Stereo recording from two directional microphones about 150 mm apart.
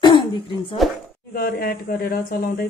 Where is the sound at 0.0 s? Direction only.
30° left (ahead or behind).